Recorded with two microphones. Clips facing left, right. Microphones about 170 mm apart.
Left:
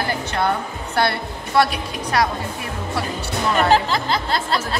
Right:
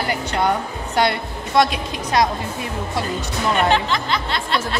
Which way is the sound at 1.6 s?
20° right (ahead or behind).